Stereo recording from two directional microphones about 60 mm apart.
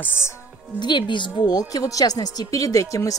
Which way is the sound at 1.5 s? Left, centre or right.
Left.